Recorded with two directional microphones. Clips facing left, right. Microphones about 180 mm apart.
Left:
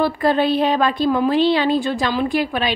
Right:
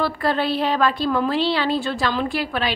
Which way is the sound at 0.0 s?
15° left (ahead or behind).